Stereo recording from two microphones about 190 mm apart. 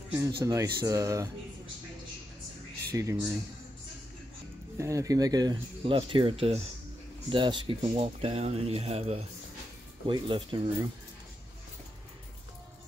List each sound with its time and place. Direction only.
0.4 s speech: 15° right (ahead or behind)
2.9 s speech: 15° right (ahead or behind)
4.7 s speech: 15° right (ahead or behind)